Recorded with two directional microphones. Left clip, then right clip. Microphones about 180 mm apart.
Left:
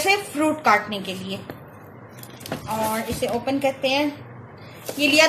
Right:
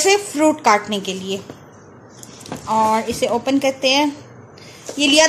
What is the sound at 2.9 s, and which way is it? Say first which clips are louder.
Speech: right 7 dB; 55° right (ahead or behind).